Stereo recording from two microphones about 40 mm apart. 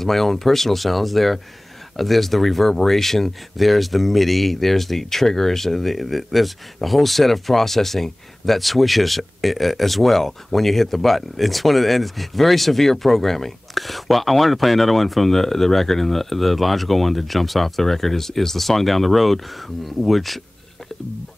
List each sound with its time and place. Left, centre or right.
0.0 s speech: centre